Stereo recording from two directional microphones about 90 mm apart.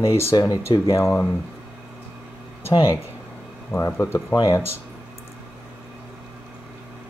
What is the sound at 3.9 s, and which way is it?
Speech, 30° left (ahead or behind).